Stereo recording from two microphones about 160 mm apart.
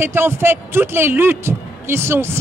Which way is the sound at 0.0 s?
15° right (ahead or behind).